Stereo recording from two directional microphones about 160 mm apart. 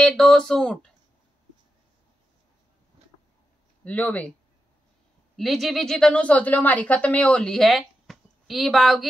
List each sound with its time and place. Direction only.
0.0 s a woman's voice: centre (ahead or behind)
3.0 s a sound: 45° right (ahead or behind)
3.8 s speech: 10° left (ahead or behind)
5.3 s a woman's voice: centre (ahead or behind)